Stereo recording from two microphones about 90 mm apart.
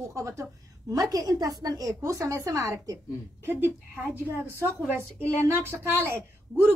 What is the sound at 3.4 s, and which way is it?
A woman's voice, 25° right (ahead or behind).